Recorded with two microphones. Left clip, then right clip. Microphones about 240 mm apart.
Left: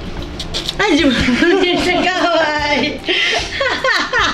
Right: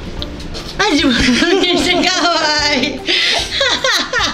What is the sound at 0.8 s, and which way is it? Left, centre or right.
Speech, centre.